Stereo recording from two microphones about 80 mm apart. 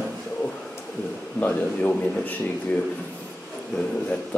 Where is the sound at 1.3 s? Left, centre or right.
Centre.